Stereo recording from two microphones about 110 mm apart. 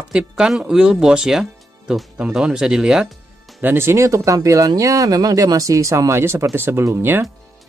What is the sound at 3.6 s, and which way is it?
Speech, 20° right (ahead or behind).